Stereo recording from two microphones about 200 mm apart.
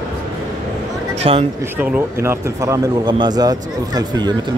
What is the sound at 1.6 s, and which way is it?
A man's voice, 10° right (ahead or behind).